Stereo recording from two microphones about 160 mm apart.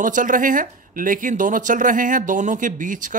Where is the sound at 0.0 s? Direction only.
55° right (ahead or behind).